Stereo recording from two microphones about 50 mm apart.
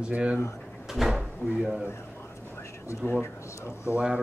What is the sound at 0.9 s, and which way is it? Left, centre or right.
Speech, centre.